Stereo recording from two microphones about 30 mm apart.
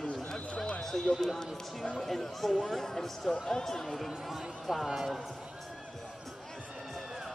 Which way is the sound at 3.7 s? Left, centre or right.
Centre.